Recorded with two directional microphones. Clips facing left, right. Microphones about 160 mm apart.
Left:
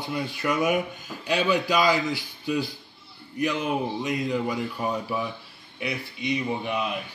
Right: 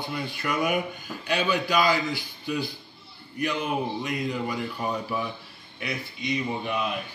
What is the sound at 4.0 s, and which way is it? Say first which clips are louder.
Speech: left 3 dB; 20° left (ahead or behind).